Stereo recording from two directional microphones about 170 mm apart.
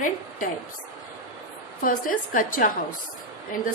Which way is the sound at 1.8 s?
55° left (ahead or behind).